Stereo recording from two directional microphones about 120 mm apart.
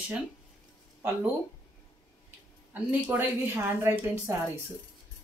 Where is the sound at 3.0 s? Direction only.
15° right (ahead or behind).